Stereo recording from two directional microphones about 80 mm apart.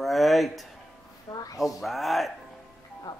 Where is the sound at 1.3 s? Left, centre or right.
Left.